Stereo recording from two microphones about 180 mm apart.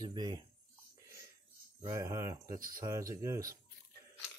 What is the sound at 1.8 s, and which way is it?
Speech, 15° right (ahead or behind).